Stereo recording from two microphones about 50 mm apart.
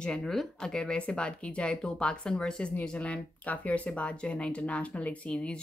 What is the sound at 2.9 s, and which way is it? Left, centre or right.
Speech, left.